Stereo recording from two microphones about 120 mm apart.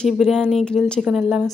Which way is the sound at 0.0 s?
5° left (ahead or behind).